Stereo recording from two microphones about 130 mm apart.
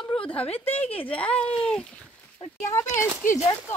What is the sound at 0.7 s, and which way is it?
Speech, 50° left (ahead or behind).